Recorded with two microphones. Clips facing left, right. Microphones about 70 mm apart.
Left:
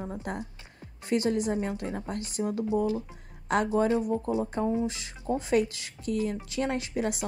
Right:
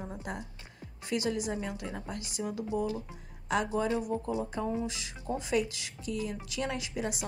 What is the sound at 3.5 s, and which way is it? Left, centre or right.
A woman's voice, left.